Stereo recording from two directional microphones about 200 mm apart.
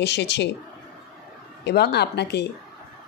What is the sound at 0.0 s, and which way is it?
Speech, 60° left (ahead or behind).